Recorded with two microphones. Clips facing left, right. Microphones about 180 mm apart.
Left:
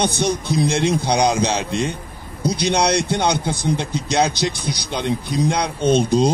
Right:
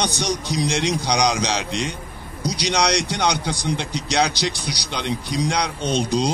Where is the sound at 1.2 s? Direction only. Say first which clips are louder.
Left 3 dB; 55° left (ahead or behind).